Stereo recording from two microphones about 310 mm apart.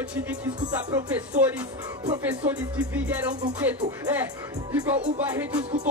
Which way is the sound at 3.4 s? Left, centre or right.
Centre.